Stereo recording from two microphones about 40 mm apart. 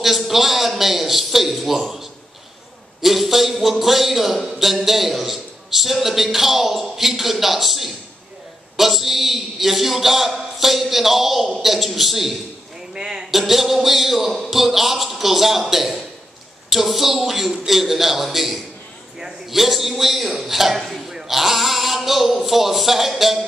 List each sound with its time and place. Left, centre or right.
0.0 s a man's voice: centre
12.9 s a man's voice: centre
13.3 s a man's voice: centre